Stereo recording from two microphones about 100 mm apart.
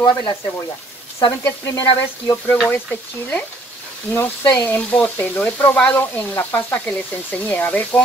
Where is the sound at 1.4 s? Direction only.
25° left (ahead or behind).